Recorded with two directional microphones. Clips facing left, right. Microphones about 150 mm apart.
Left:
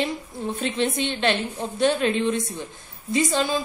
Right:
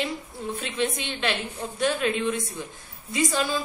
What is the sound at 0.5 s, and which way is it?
A woman's voice, 25° left (ahead or behind).